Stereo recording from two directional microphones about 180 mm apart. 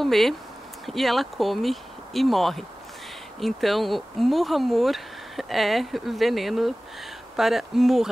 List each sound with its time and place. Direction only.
0.0 s speech: centre (ahead or behind)